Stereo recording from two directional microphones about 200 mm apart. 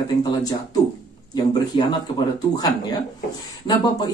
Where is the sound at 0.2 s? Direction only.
20° left (ahead or behind).